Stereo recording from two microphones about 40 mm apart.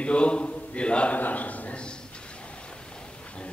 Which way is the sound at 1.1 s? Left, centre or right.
Left.